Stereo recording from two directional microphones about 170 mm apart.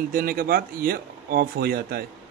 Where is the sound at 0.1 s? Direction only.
60° right (ahead or behind).